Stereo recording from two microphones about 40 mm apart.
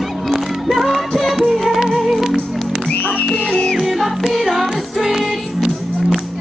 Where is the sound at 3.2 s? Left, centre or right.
Left.